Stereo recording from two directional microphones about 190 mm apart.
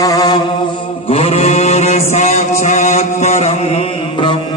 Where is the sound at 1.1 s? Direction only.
30° left (ahead or behind).